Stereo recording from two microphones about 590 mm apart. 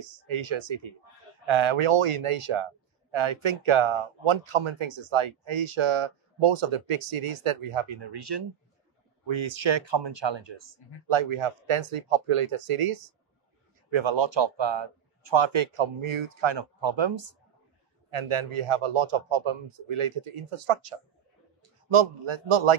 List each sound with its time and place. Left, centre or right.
0.0 s a man's voice: right
13.8 s a man's voice: right
21.8 s speech: right